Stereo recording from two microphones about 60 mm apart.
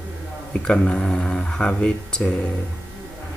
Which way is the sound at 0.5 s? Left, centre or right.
Centre.